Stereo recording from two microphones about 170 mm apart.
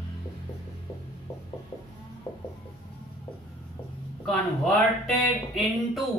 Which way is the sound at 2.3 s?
30° left (ahead or behind).